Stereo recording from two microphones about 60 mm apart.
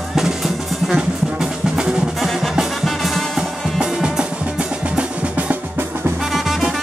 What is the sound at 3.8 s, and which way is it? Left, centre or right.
Music, centre.